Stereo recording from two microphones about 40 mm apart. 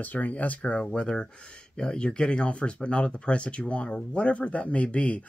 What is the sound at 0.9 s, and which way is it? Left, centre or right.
Speech, left.